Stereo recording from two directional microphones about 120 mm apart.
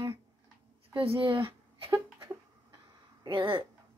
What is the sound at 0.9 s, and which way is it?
A woman's voice, 50° right (ahead or behind).